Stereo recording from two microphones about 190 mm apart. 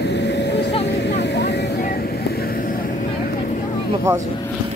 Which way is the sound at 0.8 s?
65° left (ahead or behind).